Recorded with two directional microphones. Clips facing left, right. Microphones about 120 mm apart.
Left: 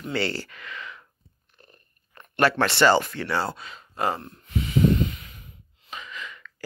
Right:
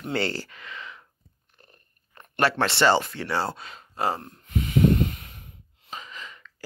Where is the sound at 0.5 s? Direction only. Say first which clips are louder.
Left 1 dB; 25° right (ahead or behind).